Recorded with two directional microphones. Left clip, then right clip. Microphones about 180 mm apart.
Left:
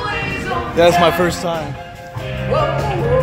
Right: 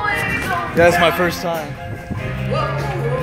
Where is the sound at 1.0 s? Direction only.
5° left (ahead or behind).